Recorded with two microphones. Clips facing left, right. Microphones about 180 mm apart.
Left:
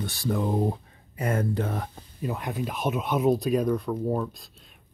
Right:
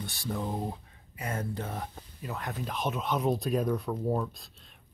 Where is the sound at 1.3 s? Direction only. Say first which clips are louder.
Left 8 dB; 75° left (ahead or behind).